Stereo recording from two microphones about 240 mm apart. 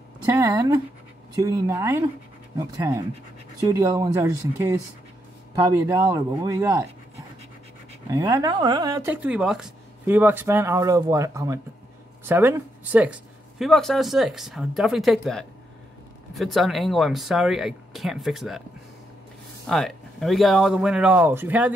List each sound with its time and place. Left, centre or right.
0.4 s speech: centre
3.6 s speech: centre
5.9 s speech: centre
8.1 s speech: centre
19.6 s speech: centre